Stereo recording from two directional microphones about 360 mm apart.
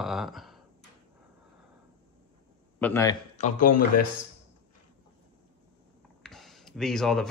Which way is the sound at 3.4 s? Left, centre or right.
Centre.